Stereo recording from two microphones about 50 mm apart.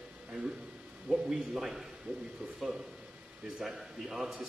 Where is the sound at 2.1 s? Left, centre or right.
Right.